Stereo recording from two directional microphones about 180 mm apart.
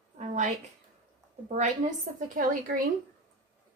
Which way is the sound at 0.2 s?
45° right (ahead or behind).